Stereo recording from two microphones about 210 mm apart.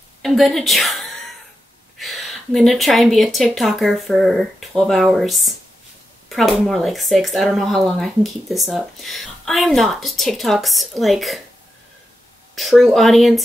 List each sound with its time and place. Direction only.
0.2 s a woman's voice: centre (ahead or behind)
12.5 s speech: centre (ahead or behind)